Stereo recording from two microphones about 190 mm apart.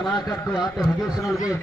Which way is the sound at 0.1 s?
20° left (ahead or behind).